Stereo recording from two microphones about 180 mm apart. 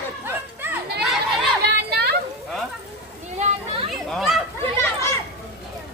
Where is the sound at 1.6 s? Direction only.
65° right (ahead or behind).